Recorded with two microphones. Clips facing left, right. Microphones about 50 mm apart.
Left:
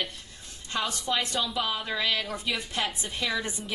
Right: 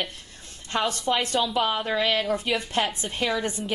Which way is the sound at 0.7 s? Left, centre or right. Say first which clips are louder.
Right 4 dB; right.